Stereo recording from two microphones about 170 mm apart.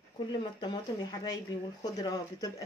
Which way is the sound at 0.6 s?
25° left (ahead or behind).